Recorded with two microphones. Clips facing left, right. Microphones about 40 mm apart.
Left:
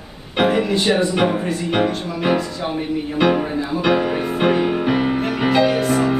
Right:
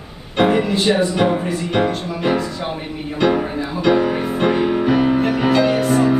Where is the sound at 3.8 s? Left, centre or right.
Centre.